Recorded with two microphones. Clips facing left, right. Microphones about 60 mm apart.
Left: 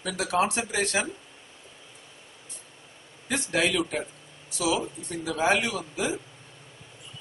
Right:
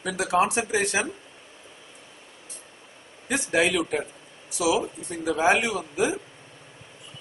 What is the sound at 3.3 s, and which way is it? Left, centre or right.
Speech, centre.